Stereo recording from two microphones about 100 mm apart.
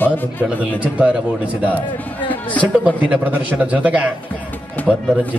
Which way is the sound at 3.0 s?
15° right (ahead or behind).